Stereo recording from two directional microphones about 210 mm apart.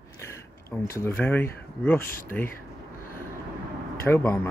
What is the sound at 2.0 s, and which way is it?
Speech, 40° left (ahead or behind).